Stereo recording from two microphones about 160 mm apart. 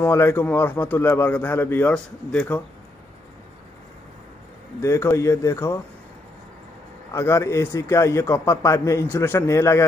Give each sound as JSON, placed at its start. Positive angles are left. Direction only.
{"t": 0.0, "sound": "a man's voice", "side_deg": 15}
{"t": 4.8, "sound": "a man's voice", "side_deg": 15}
{"t": 7.1, "sound": "a man's voice", "side_deg": 15}